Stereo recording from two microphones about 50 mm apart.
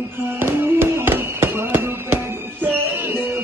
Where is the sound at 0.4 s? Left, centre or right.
Right.